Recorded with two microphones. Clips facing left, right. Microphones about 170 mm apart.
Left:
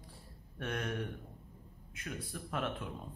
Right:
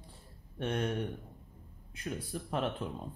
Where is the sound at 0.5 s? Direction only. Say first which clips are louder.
Right 5 dB; 30° right (ahead or behind).